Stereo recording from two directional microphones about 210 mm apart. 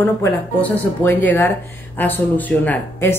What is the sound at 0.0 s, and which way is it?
Speech, 10° left (ahead or behind).